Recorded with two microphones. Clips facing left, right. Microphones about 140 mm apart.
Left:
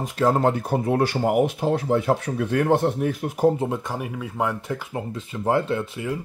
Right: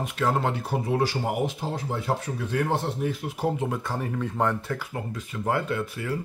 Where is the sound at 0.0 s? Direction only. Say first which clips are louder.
Left 5 dB; 35° left (ahead or behind).